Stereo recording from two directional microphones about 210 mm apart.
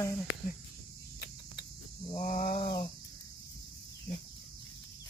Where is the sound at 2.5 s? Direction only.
25° left (ahead or behind).